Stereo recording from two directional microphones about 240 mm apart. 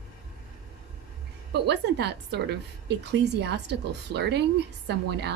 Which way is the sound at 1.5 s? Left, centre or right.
Right.